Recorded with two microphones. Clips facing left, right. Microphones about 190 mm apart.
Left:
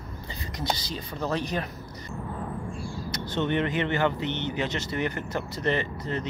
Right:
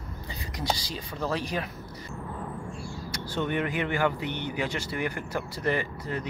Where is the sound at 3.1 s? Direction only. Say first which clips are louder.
Left 2 dB; 10° right (ahead or behind).